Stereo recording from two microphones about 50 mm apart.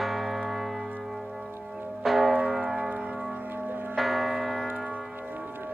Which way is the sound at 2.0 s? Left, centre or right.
Centre.